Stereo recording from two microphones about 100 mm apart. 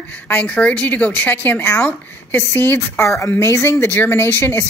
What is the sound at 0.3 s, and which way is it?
Speech, 15° left (ahead or behind).